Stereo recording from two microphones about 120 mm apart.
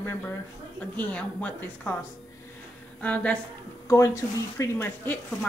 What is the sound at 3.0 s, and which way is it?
Speech, 10° left (ahead or behind).